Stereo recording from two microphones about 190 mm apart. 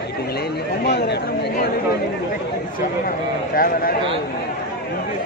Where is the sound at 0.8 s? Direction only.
60° left (ahead or behind).